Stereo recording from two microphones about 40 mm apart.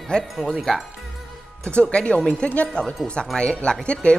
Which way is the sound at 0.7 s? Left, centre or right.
Centre.